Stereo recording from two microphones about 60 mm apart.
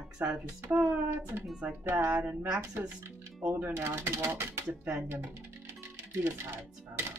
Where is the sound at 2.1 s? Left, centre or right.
Right.